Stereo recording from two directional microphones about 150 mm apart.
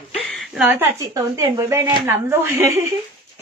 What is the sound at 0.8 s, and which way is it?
A woman's voice, 20° right (ahead or behind).